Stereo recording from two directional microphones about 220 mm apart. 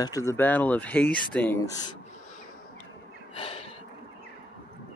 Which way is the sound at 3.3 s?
25° left (ahead or behind).